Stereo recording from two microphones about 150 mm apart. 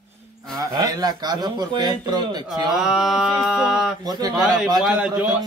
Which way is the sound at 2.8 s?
Centre (ahead or behind).